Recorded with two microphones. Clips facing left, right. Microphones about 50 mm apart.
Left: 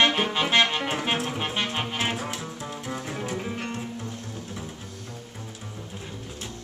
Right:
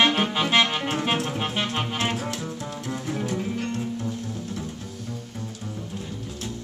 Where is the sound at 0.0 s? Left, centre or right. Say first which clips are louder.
Right 1 dB; centre; by 3.8 s left.